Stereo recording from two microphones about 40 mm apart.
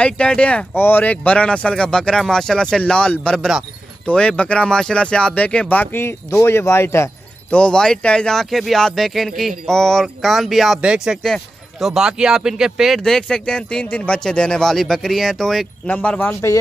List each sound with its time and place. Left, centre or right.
0.0 s speech: left
0.7 s speech: left
1.0 s speech: left
5.7 s speech: left
5.9 s speech: left
7.7 s speech: centre
8.4 s speech: centre
12.0 s speech: centre
13.0 s speech: centre
14.6 s speech: centre
15.9 s speech: left